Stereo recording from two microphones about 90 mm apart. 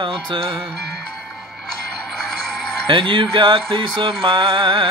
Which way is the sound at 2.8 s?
70° right (ahead or behind).